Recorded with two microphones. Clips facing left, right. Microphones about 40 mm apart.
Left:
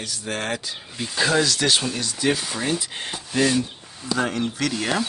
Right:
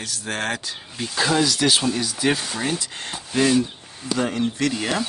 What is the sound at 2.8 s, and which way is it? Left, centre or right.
Speech, centre.